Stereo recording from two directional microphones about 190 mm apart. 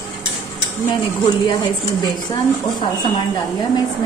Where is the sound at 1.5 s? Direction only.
20° left (ahead or behind).